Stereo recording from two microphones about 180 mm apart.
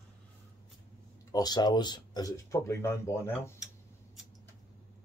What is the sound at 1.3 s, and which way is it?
Speech, 20° left (ahead or behind).